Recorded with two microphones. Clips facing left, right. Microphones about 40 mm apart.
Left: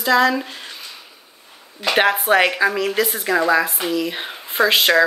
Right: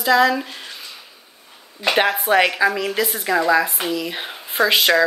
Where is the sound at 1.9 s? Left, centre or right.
Centre.